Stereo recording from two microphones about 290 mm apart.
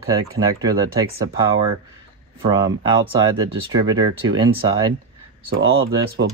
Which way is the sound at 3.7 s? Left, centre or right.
Centre.